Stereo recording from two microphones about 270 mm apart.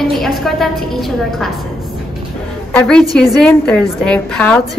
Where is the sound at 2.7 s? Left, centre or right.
Centre.